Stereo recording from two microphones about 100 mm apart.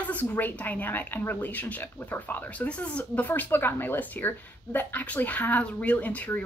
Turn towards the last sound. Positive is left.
turn(degrees=15)  # may be behind; listen again after turning